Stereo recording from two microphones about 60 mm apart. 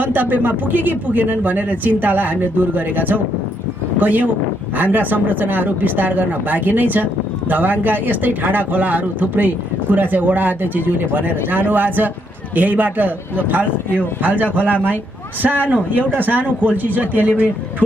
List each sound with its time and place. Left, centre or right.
0.0 s speech: right